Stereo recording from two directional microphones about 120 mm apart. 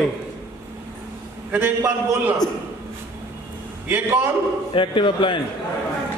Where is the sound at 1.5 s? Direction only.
15° right (ahead or behind).